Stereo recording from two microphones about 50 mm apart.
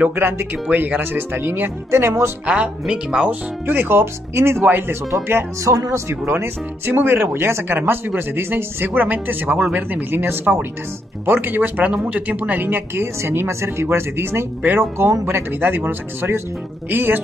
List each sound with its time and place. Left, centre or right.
0.1 s speech: right
0.7 s speech: right
1.9 s speech: right
2.4 s speech: right
3.3 s speech: right
4.6 s speech: right
5.1 s speech: right
9.0 s speech: right